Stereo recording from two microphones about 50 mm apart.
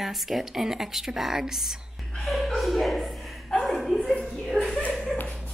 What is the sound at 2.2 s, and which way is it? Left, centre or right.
Speech, centre.